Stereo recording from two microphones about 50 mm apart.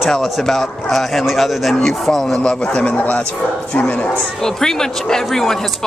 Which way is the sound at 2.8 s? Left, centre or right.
Left.